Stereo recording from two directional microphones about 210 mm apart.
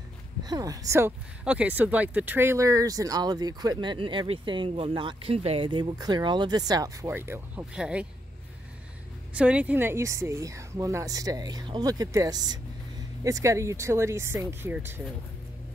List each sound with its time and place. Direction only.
0.4 s speech: 20° right (ahead or behind)
9.3 s speech: 5° right (ahead or behind)